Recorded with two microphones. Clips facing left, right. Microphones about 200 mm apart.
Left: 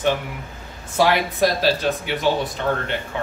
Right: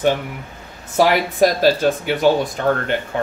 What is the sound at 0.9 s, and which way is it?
Speech, 45° right (ahead or behind).